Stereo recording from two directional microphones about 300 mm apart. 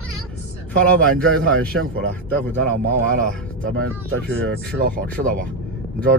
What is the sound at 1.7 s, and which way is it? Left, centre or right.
Speech, right.